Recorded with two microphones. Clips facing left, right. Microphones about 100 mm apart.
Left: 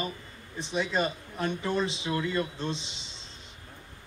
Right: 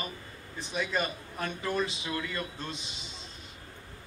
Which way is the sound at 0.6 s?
25° left (ahead or behind).